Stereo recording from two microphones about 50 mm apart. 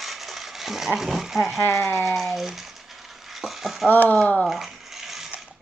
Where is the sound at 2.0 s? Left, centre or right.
Centre.